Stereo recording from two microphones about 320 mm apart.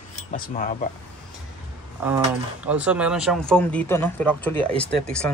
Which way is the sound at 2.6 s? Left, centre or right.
Centre.